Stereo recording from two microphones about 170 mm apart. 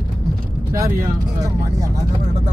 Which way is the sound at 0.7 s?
20° right (ahead or behind).